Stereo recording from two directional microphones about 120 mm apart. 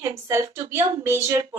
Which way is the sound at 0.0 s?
20° right (ahead or behind).